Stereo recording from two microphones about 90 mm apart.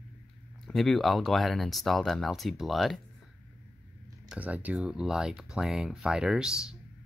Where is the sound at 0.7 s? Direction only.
Centre (ahead or behind).